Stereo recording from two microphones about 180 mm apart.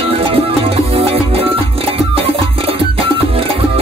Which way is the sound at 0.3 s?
30° right (ahead or behind).